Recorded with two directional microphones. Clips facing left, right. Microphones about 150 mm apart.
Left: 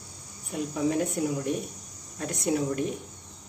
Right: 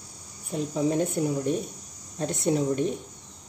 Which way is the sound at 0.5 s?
25° right (ahead or behind).